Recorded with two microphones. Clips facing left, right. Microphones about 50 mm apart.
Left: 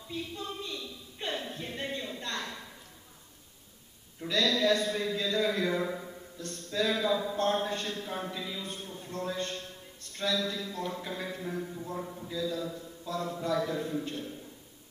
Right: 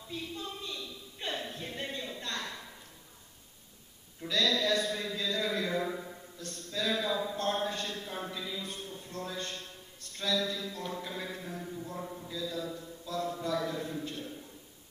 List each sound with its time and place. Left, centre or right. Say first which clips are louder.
0.1 s a sound: left 2 dB; left
4.3 s a man's voice: left 3 dB; left
12.0 s speech: left 2 dB; centre
12.4 s a man's voice: left 4 dB; left